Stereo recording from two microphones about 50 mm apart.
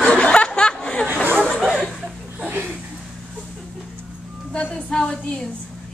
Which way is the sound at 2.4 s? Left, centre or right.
Right.